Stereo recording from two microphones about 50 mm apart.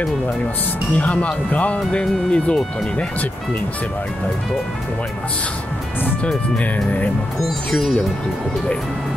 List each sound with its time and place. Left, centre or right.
0.9 s speech: left
6.6 s speech: left
7.4 s speech: centre